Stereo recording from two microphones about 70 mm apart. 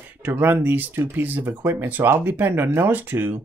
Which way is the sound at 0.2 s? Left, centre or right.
Right.